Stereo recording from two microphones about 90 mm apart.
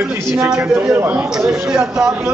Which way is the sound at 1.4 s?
10° right (ahead or behind).